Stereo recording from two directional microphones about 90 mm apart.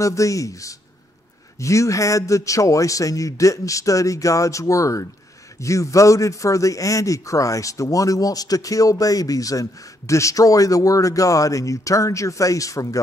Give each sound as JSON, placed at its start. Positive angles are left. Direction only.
{"t": 0.0, "sound": "a man's voice", "side_deg": 35}